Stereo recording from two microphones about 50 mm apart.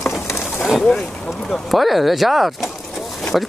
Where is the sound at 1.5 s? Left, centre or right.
Centre.